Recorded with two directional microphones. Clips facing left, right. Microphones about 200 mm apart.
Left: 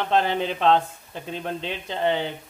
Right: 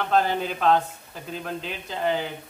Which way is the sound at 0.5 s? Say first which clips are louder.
Left 1 dB; 25° left (ahead or behind).